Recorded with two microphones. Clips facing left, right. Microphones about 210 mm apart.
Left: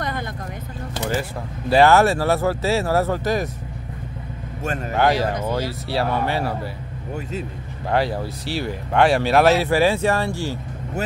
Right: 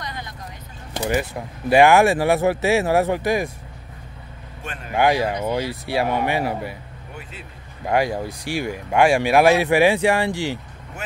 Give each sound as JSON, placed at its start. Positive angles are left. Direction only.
{"t": 0.0, "sound": "vehicle", "side_deg": 55}
{"t": 1.7, "sound": "speech", "side_deg": -15}
{"t": 4.9, "sound": "speech", "side_deg": -15}
{"t": 7.9, "sound": "speech", "side_deg": -15}